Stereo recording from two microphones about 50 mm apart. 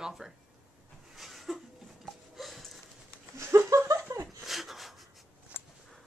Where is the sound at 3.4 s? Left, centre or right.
Right.